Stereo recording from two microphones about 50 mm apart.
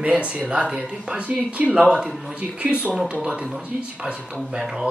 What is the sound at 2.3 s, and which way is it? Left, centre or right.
Speech, right.